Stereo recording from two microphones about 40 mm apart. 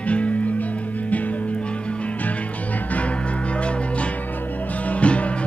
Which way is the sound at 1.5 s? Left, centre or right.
Left.